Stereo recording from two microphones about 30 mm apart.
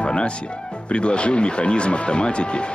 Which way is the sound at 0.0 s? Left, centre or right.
Left.